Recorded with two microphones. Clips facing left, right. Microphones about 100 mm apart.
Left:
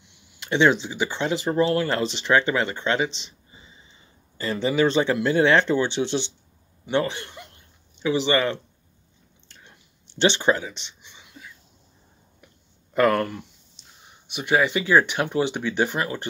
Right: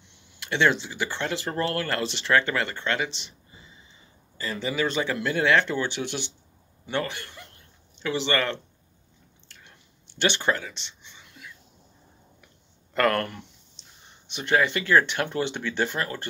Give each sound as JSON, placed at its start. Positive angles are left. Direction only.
{"t": 0.4, "sound": "speech", "side_deg": 15}
{"t": 4.4, "sound": "speech", "side_deg": 30}
{"t": 9.7, "sound": "a sound", "side_deg": 20}
{"t": 12.9, "sound": "speech", "side_deg": 10}